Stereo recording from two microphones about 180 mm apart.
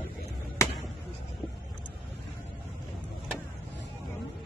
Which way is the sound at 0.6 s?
15° left (ahead or behind).